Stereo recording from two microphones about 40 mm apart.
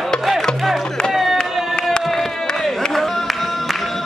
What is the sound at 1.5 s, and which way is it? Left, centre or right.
Music, centre.